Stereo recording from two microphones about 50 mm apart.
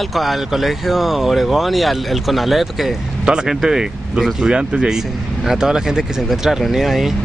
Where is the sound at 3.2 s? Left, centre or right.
Centre.